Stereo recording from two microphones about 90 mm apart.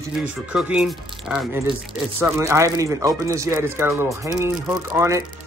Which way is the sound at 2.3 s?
35° right (ahead or behind).